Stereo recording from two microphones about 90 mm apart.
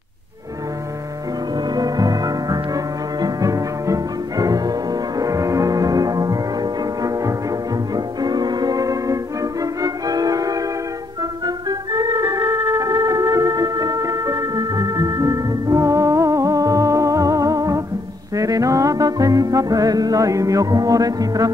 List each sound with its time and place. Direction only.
1.7 s music: 45° right (ahead or behind)